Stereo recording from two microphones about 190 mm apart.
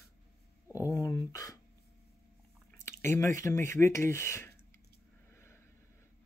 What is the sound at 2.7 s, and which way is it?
Speech, 15° left (ahead or behind).